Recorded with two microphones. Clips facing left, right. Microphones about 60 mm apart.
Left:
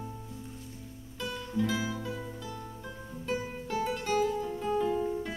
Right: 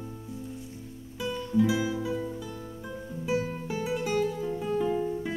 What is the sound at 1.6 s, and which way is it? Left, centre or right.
Music, centre.